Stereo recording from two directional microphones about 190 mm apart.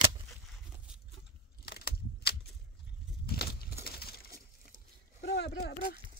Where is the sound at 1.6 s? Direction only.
55° left (ahead or behind).